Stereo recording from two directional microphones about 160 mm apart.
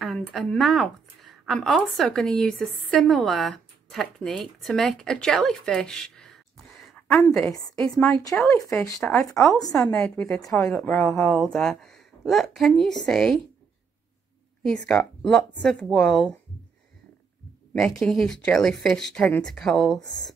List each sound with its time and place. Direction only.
0.0 s speech: 5° left (ahead or behind)
7.4 s speech: 20° left (ahead or behind)
9.7 s a woman's voice: 5° left (ahead or behind)
14.6 s speech: 5° left (ahead or behind)
17.7 s speech: 5° left (ahead or behind)